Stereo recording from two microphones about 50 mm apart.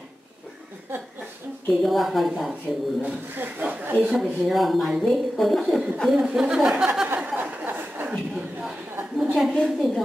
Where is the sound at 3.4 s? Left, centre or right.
Right.